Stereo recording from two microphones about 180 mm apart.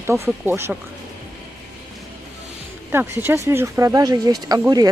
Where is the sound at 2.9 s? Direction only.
15° right (ahead or behind).